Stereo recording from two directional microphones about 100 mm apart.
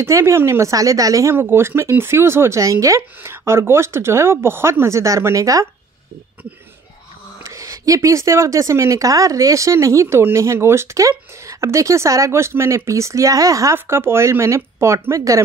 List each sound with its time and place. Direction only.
0.0 s speech: 30° right (ahead or behind)
1.3 s speech: 25° right (ahead or behind)
7.4 s speech: 30° right (ahead or behind)